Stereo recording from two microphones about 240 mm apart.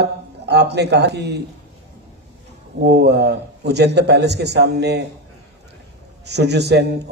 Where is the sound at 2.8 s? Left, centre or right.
Right.